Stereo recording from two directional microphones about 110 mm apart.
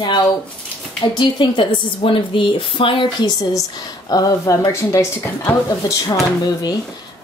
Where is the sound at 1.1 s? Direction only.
45° left (ahead or behind).